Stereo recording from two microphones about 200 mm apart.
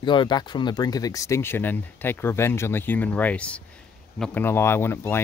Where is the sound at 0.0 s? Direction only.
25° left (ahead or behind).